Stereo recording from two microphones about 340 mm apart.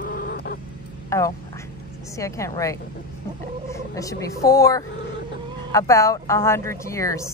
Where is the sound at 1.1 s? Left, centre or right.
Centre.